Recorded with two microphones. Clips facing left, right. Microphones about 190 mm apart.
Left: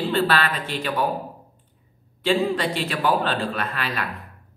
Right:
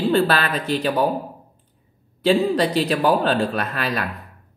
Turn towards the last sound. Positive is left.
turn(degrees=-40)  # may be behind; listen again after turning